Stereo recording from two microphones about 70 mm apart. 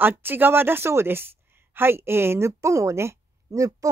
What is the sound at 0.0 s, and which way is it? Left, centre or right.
A woman's voice, right.